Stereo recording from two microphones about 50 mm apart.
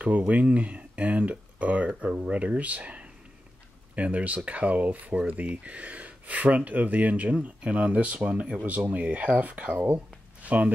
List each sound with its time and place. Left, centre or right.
0.3 s speech: right
8.6 s speech: right
9.9 s a sound: right